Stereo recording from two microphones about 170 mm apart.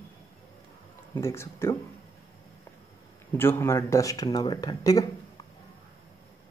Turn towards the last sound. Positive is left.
turn(degrees=20)  # may be behind; listen again after turning